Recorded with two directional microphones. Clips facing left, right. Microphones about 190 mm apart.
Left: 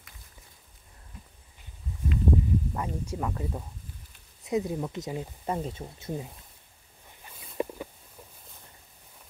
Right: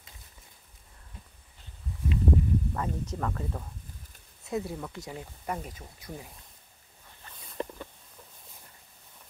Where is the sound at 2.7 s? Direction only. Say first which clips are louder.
Even; 10° left (ahead or behind).